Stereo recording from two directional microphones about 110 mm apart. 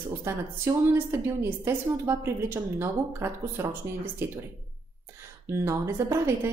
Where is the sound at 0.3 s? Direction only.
25° right (ahead or behind).